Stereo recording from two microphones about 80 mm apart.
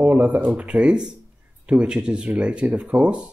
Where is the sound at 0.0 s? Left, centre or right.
Right.